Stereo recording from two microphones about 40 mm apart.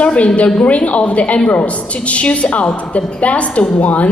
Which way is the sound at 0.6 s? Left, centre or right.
Left.